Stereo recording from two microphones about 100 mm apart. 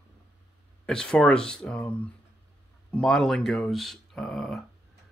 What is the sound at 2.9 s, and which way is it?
Speech, 5° left (ahead or behind).